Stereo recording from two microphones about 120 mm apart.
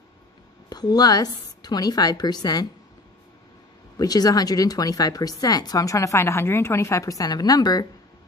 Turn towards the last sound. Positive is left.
turn(degrees=35)  # may be behind; listen again after turning